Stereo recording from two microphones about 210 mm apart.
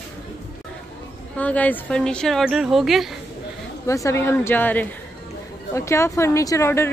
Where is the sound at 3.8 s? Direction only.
15° left (ahead or behind).